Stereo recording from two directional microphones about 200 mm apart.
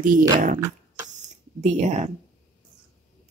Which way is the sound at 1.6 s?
35° right (ahead or behind).